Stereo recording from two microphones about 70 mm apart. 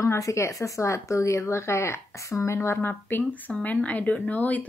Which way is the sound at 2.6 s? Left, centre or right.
Left.